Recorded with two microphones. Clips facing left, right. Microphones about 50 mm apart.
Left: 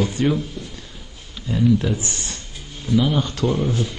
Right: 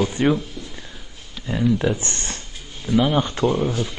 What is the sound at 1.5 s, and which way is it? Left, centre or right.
Speech, centre.